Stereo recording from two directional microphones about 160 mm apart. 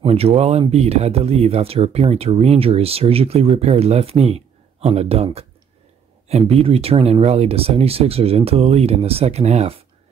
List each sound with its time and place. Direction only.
0.0 s speech: 40° right (ahead or behind)